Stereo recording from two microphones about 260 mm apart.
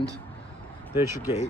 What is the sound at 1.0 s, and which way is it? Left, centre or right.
Speech, centre.